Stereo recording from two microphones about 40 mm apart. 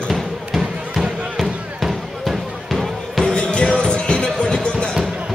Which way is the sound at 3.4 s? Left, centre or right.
Left.